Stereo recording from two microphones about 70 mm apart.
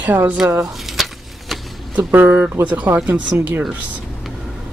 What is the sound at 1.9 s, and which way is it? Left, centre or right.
Speech, right.